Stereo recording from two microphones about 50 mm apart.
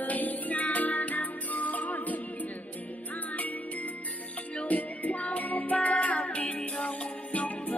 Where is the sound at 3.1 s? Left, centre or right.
Left.